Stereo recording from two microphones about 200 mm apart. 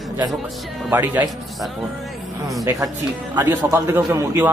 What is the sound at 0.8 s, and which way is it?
Speech, 10° right (ahead or behind).